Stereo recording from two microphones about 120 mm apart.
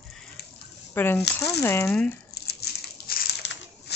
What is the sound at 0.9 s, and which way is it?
Speech, 20° left (ahead or behind).